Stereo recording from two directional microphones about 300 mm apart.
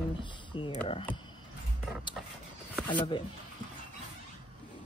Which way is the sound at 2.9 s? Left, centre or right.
Centre.